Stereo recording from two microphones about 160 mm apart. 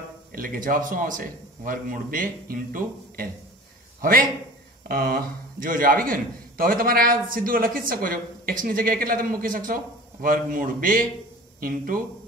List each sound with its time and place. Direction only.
0.3 s a man's voice: 60° right (ahead or behind)
4.8 s a man's voice: 65° right (ahead or behind)